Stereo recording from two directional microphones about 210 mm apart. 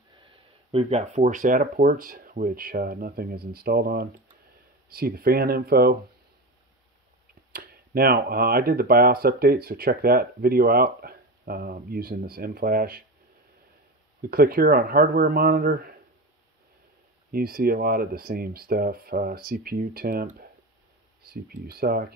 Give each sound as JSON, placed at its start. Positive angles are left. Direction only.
{"t": 0.3, "sound": "speech", "side_deg": -30}
{"t": 7.5, "sound": "speech", "side_deg": -45}
{"t": 14.3, "sound": "speech", "side_deg": -45}
{"t": 17.3, "sound": "speech", "side_deg": -45}